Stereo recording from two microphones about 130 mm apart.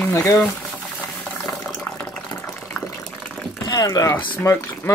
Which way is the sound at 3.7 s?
30° left (ahead or behind).